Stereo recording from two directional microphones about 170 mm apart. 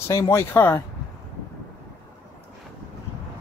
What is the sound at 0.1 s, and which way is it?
Speech, 15° left (ahead or behind).